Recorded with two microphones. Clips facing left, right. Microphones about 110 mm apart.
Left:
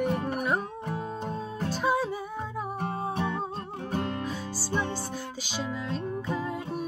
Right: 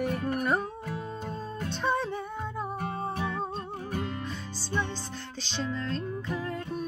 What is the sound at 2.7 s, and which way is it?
Music, 30° left (ahead or behind).